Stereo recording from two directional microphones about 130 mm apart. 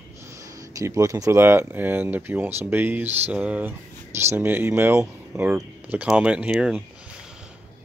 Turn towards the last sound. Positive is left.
turn(degrees=-5)  # may be behind; listen again after turning